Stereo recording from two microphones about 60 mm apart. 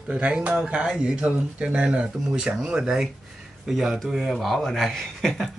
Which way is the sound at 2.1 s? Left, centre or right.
Centre.